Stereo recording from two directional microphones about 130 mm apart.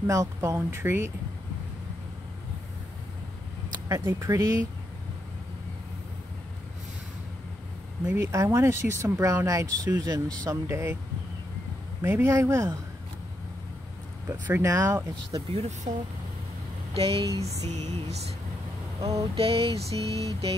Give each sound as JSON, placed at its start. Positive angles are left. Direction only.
{"t": 0.0, "sound": "speech", "side_deg": -25}
{"t": 3.7, "sound": "a sound", "side_deg": -30}
{"t": 4.1, "sound": "speech", "side_deg": -25}
{"t": 8.1, "sound": "speech", "side_deg": -20}
{"t": 12.0, "sound": "speech", "side_deg": -20}
{"t": 14.5, "sound": "speech", "side_deg": -25}
{"t": 15.5, "sound": "music", "side_deg": -55}
{"t": 16.9, "sound": "mantra", "side_deg": -45}
{"t": 17.5, "sound": "music", "side_deg": -60}
{"t": 19.3, "sound": "mantra", "side_deg": -45}